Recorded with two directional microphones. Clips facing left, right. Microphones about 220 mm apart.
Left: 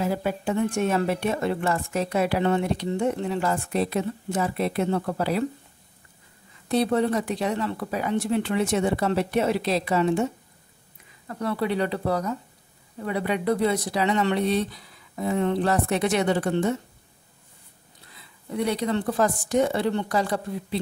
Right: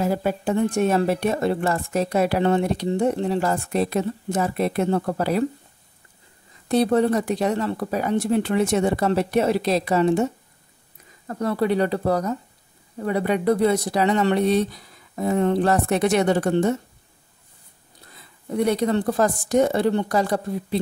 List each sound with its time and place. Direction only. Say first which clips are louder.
0.0 s a woman's voice: right 3 dB; 40° right (ahead or behind)
6.7 s speech: right 4 dB; 45° right (ahead or behind)
18.5 s speech: right 4 dB; 45° right (ahead or behind)